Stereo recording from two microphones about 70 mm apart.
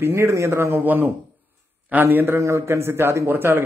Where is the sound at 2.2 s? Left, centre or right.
Right.